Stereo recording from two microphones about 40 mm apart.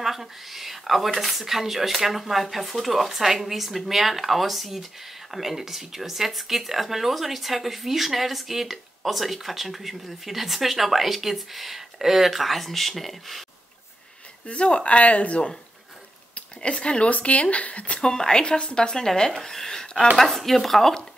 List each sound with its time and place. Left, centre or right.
0.0 s speech: centre
14.5 s speech: left
18.1 s speech: centre
20.2 s speech: centre